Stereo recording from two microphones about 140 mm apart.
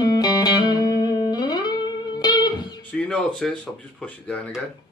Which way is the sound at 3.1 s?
5° left (ahead or behind).